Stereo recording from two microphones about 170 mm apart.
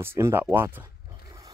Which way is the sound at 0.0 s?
15° right (ahead or behind).